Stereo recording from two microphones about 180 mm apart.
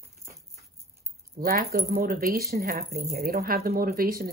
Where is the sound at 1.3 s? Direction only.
55° right (ahead or behind).